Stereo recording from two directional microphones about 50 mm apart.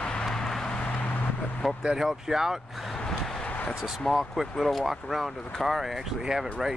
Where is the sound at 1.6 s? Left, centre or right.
Centre.